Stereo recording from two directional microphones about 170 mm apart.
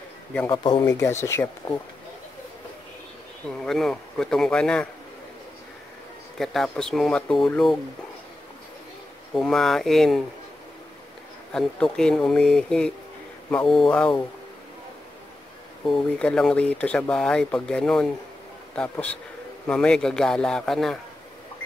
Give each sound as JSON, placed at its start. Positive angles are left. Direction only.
{"t": 0.5, "sound": "a man's voice", "side_deg": 25}
{"t": 3.4, "sound": "speech", "side_deg": 5}
{"t": 6.3, "sound": "speech", "side_deg": 0}
{"t": 9.3, "sound": "speech", "side_deg": 5}
{"t": 11.5, "sound": "speech", "side_deg": 5}
{"t": 15.9, "sound": "a man's voice", "side_deg": 5}